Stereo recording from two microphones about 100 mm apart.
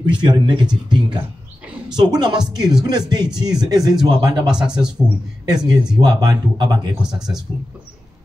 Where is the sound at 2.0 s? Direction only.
45° right (ahead or behind).